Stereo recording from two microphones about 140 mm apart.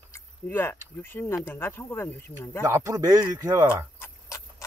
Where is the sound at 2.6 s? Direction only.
25° right (ahead or behind).